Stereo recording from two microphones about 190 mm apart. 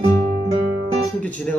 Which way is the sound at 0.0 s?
30° right (ahead or behind).